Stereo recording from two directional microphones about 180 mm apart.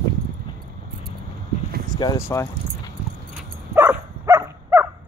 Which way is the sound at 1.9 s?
20° left (ahead or behind).